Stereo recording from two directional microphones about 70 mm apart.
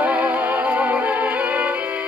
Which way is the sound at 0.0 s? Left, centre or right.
Right.